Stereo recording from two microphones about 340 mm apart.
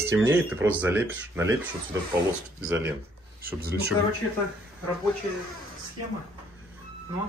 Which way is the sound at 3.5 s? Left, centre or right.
Right.